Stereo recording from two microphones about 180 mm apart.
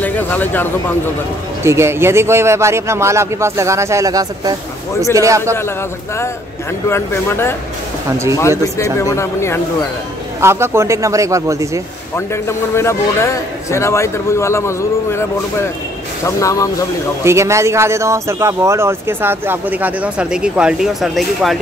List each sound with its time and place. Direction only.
0.0 s speech: 10° left (ahead or behind)
1.6 s speech: 15° right (ahead or behind)
6.9 s speech: 15° left (ahead or behind)
10.4 s speech: 15° right (ahead or behind)
12.4 s speech: 15° left (ahead or behind)
16.3 s speech: 15° left (ahead or behind)
17.2 s speech: 15° right (ahead or behind); by 21.5 s centre (ahead or behind)